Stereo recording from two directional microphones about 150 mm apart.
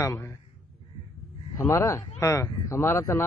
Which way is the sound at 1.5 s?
20° left (ahead or behind).